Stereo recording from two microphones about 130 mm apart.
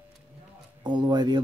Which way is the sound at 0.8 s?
35° right (ahead or behind).